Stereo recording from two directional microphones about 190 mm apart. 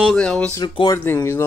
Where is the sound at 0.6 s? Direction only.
20° left (ahead or behind).